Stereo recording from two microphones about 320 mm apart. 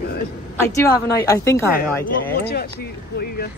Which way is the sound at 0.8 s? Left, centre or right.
Centre.